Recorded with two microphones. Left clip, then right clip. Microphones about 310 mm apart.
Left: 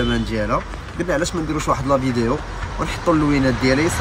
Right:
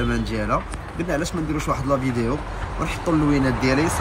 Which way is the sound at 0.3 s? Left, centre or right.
Centre.